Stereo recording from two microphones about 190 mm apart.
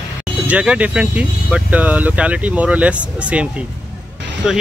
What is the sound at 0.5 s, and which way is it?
Speech, 5° right (ahead or behind).